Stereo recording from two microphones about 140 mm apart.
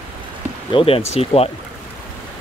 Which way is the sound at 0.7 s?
40° left (ahead or behind).